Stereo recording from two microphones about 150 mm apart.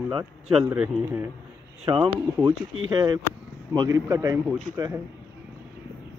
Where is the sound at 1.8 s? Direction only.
35° right (ahead or behind).